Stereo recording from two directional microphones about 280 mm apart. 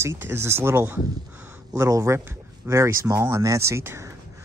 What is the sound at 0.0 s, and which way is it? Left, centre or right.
Speech, centre.